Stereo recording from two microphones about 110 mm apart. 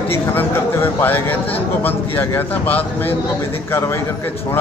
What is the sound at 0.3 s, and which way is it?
A man's voice, 20° left (ahead or behind).